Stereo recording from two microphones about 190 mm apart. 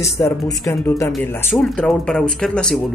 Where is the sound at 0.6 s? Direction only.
15° left (ahead or behind).